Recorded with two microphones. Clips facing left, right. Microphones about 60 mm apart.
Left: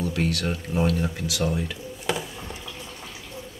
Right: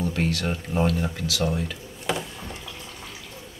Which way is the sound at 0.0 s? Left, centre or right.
Centre.